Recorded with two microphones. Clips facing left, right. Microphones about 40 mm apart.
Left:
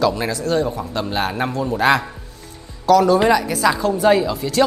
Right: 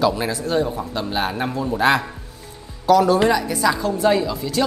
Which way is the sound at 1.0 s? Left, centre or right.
Centre.